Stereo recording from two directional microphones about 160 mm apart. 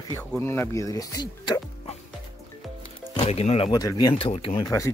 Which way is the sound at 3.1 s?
40° left (ahead or behind).